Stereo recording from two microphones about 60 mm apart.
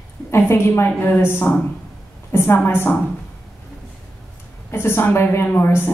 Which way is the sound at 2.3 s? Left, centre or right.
Left.